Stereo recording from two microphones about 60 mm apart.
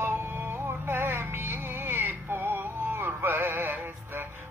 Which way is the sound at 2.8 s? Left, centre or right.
Right.